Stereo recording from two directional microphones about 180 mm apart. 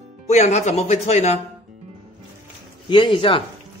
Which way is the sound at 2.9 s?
25° left (ahead or behind).